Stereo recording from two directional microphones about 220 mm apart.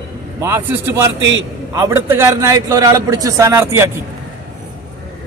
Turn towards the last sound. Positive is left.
turn(degrees=-15)  # may be behind; listen again after turning